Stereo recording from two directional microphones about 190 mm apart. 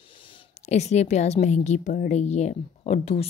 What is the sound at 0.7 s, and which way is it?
Speech, 35° left (ahead or behind).